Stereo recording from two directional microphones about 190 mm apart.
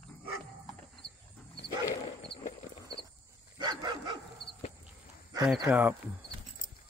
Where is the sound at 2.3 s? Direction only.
35° left (ahead or behind).